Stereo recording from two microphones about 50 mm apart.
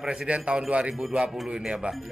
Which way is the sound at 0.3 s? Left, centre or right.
Right.